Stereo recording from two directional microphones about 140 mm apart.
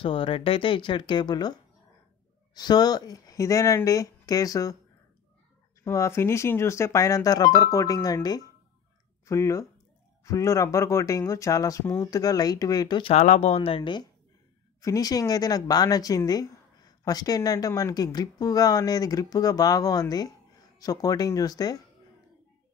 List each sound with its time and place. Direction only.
0.0 s speech: 40° left (ahead or behind)
5.9 s speech: 20° left (ahead or behind)
13.1 s speech: 50° left (ahead or behind)
14.8 s speech: 25° left (ahead or behind)